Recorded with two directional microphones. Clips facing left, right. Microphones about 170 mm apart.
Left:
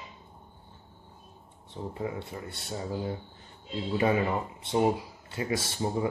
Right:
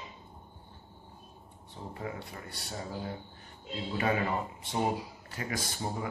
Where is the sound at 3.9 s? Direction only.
25° left (ahead or behind).